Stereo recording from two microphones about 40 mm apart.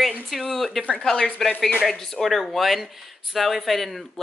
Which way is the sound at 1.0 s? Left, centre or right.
Centre.